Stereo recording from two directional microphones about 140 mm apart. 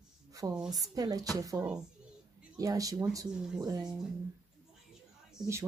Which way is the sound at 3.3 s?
5° right (ahead or behind).